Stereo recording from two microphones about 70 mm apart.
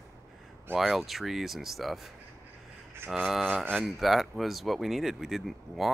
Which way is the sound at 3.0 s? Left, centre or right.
Right.